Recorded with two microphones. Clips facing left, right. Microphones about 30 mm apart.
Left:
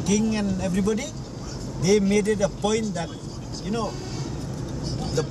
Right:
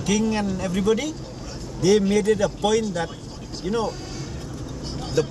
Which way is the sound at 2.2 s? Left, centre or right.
Right.